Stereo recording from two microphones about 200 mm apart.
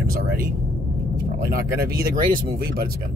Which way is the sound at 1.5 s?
50° right (ahead or behind).